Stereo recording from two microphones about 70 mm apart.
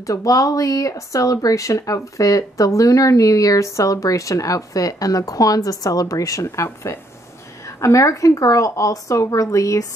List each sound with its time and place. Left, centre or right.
0.0 s a woman's voice: left